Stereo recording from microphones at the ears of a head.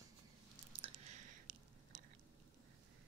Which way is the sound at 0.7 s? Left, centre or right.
Right.